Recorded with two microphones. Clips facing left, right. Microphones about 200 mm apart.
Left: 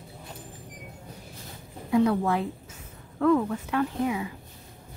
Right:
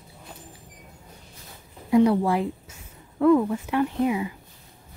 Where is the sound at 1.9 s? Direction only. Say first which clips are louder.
Right 4 dB; 15° right (ahead or behind).